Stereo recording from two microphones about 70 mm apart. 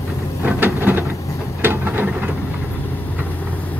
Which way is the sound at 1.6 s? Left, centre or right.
Right.